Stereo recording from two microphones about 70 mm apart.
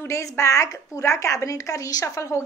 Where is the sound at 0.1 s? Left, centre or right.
Left.